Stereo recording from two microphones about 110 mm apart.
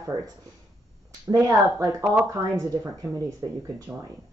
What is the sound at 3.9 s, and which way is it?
Speech, 15° right (ahead or behind).